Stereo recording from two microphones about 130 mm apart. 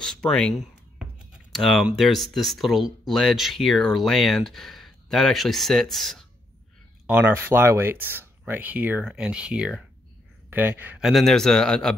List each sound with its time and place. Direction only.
0.0 s speech: 5° left (ahead or behind)
7.1 s speech: 15° right (ahead or behind)
11.0 s speech: centre (ahead or behind)